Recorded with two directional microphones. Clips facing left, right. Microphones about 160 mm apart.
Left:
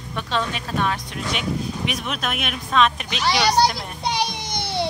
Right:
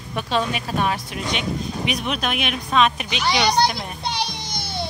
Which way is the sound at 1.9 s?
Centre (ahead or behind).